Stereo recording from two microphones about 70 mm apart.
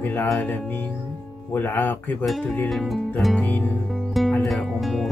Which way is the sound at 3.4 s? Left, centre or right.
Left.